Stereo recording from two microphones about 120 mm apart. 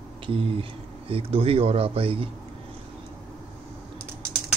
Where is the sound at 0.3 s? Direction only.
50° right (ahead or behind).